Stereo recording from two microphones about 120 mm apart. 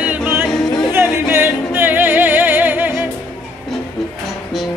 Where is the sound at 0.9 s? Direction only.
20° right (ahead or behind).